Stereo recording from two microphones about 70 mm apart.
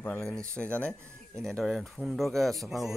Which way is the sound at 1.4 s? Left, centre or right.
Centre.